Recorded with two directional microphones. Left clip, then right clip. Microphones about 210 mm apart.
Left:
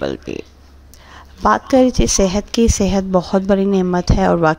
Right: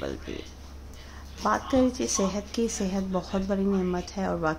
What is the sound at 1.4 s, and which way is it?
A woman's voice, 45° left (ahead or behind).